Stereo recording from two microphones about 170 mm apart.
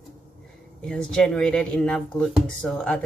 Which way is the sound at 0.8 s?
5° left (ahead or behind).